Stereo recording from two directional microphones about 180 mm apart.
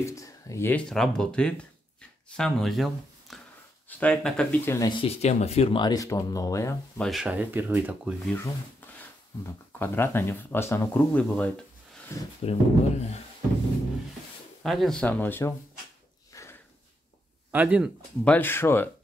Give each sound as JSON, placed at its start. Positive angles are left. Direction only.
{"t": 0.0, "sound": "speech", "side_deg": 20}
{"t": 5.0, "sound": "speech", "side_deg": 35}
{"t": 7.0, "sound": "speech", "side_deg": 0}
{"t": 9.8, "sound": "speech", "side_deg": 10}
{"t": 12.4, "sound": "speech", "side_deg": 40}
{"t": 14.6, "sound": "speech", "side_deg": 0}
{"t": 16.3, "sound": "a sound", "side_deg": 15}
{"t": 17.5, "sound": "speech", "side_deg": -10}
{"t": 18.2, "sound": "speech", "side_deg": 10}